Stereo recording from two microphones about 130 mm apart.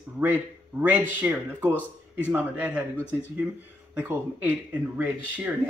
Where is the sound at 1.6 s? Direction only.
15° left (ahead or behind).